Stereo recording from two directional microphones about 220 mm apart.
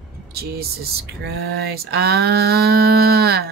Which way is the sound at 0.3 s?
45° right (ahead or behind).